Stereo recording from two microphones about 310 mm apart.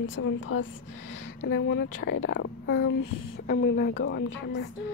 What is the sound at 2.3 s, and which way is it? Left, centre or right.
Speech, left.